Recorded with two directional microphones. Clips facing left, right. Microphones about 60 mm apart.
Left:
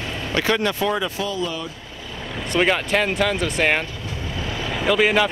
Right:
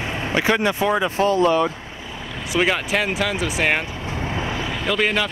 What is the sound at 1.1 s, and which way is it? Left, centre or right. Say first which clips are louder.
Speech: right 9 dB; right.